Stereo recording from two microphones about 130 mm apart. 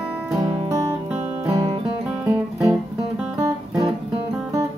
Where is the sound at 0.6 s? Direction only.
20° right (ahead or behind).